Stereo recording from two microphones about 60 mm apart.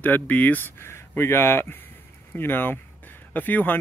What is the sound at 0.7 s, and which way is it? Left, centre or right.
Speech, left.